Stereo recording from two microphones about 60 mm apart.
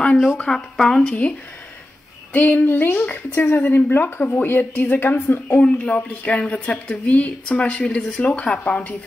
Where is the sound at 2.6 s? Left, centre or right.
Left.